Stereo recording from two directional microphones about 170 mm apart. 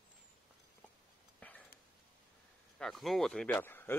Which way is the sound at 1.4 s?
10° left (ahead or behind).